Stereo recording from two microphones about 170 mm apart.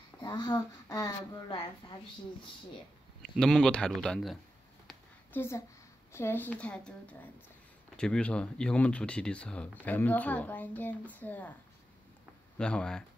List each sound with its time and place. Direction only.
0.2 s speech: 25° left (ahead or behind)
3.2 s a man's voice: centre (ahead or behind)
4.8 s a sound: 10° left (ahead or behind)
6.1 s speech: 15° left (ahead or behind)
12.5 s a man's voice: 5° left (ahead or behind)